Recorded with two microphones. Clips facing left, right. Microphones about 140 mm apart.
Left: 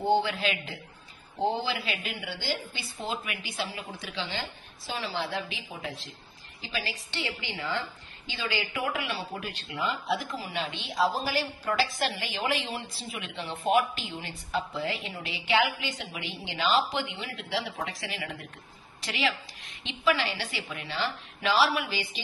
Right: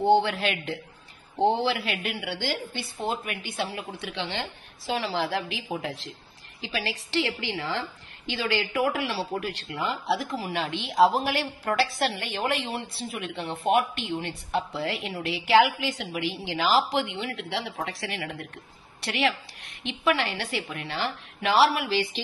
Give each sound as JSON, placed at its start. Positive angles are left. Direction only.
{"t": 0.1, "sound": "a man's voice", "side_deg": -65}